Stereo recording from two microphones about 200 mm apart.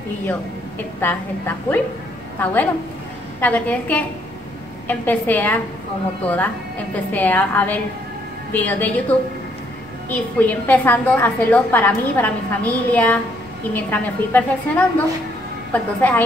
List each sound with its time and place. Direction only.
2.4 s a woman's voice: 5° left (ahead or behind)
10.4 s a woman's voice: 10° left (ahead or behind)